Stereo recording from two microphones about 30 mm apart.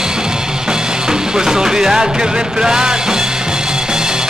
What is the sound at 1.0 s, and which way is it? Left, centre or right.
Music, right.